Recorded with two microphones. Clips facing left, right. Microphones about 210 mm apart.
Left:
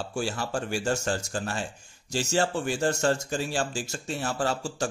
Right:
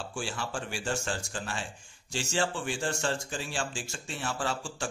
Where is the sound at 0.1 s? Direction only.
40° left (ahead or behind).